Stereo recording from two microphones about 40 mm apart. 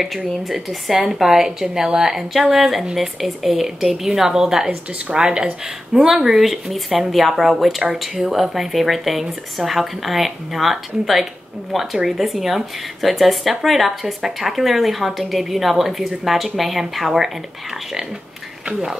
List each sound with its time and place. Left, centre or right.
0.4 s a woman's voice: centre
18.7 s speech: centre